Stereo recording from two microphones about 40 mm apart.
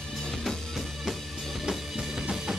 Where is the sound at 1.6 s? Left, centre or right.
Centre.